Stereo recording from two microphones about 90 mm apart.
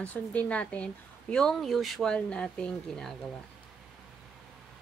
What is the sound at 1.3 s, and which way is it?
A woman's voice, 5° left (ahead or behind).